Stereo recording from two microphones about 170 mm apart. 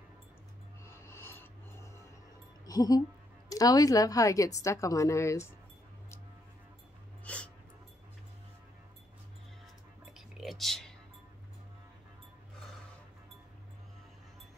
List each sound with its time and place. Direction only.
0.8 s music: 15° left (ahead or behind)
2.6 s a sound: 20° left (ahead or behind)
3.4 s a woman's voice: 20° left (ahead or behind)
7.2 s dog: 5° left (ahead or behind)
10.1 s whispering: centre (ahead or behind)